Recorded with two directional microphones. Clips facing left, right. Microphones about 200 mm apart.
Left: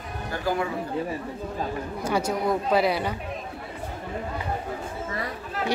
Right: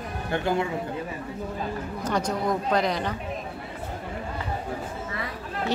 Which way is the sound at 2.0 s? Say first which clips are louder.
Left 1 dB; 10° left (ahead or behind).